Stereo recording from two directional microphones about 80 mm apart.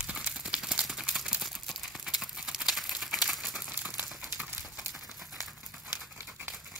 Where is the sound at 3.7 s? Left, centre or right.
Centre.